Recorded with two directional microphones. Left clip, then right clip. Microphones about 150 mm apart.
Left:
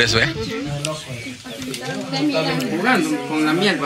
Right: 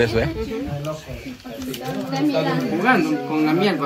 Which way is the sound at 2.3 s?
10° right (ahead or behind).